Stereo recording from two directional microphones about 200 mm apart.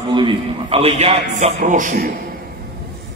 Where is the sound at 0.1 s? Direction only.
25° right (ahead or behind); by 2.1 s 45° right (ahead or behind).